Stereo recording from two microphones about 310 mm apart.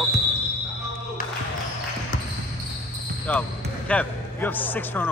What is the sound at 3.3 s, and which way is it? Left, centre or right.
A man's voice, centre.